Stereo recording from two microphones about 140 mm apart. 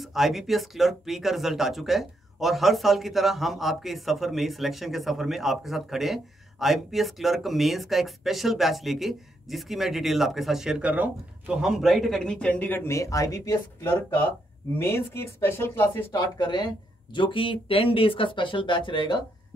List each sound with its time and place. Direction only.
0.0 s speech: centre (ahead or behind); by 16.1 s 15° left (ahead or behind)
16.1 s speech: 30° left (ahead or behind)